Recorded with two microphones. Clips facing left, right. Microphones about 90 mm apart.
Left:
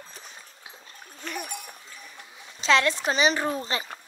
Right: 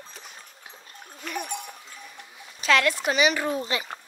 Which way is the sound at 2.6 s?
25° left (ahead or behind).